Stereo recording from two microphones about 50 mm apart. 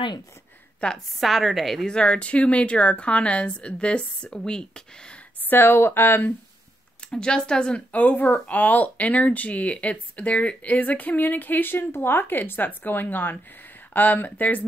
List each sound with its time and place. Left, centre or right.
0.9 s a woman's voice: centre
1.9 s a woman's voice: centre
5.5 s speech: left
7.1 s speech: centre
7.9 s speech: left